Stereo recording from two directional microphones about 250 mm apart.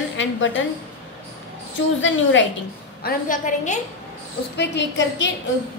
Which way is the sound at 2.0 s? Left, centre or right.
Left.